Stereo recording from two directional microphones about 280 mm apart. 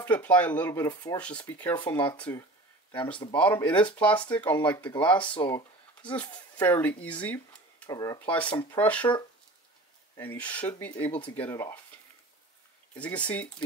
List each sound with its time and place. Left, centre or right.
0.0 s speech: centre
5.3 s speech: centre
10.1 s speech: centre
12.9 s speech: centre